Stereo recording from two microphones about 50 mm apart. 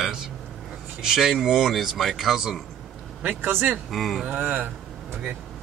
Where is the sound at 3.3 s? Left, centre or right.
Right.